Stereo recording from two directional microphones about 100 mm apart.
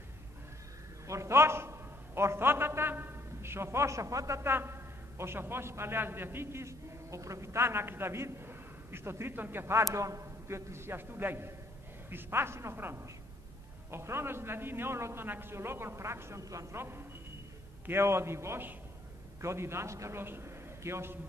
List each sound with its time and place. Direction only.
1.0 s a man's voice: 30° right (ahead or behind)